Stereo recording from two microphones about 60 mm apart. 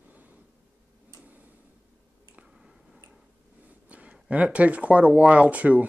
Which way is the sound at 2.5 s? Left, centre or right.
Centre.